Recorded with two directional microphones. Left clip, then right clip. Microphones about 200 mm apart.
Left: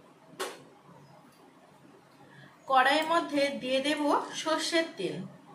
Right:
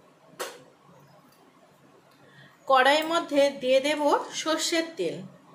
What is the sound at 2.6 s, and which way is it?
A woman's voice, 50° right (ahead or behind).